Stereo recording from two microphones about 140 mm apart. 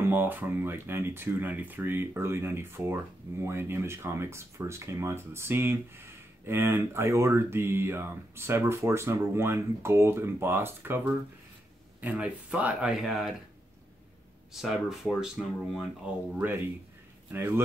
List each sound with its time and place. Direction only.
0.1 s speech: 15° right (ahead or behind)
12.0 s speech: 10° right (ahead or behind)
14.5 s speech: centre (ahead or behind)
16.3 s speech: 15° right (ahead or behind)